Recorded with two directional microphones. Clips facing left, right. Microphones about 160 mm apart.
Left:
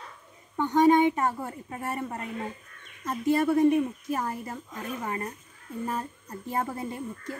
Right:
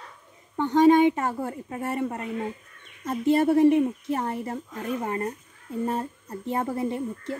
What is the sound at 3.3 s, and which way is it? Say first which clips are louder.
A woman's voice: right 3 dB; 25° right (ahead or behind).